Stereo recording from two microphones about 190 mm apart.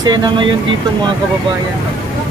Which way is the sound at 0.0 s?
20° right (ahead or behind).